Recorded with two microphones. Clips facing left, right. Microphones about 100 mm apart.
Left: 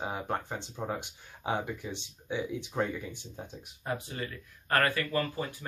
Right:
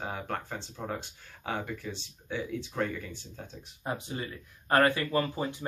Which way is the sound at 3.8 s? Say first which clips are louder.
Right 1 dB; 20° right (ahead or behind).